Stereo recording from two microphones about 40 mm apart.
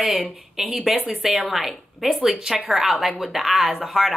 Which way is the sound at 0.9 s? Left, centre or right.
Right.